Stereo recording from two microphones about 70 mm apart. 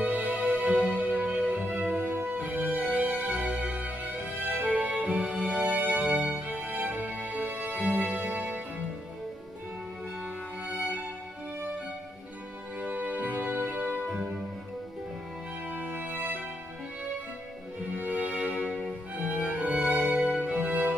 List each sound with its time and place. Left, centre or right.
0.0 s music: right
12.8 s music: right
15.7 s music: right
17.9 s music: right
18.7 s music: centre
19.4 s music: centre